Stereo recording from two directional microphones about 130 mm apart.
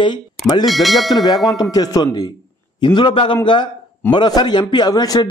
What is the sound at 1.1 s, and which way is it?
A man's voice, 30° left (ahead or behind).